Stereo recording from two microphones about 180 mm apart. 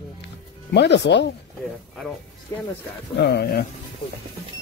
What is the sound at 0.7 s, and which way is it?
Speech, 70° left (ahead or behind).